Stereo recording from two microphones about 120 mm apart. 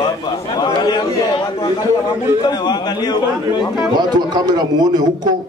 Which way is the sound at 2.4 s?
35° left (ahead or behind).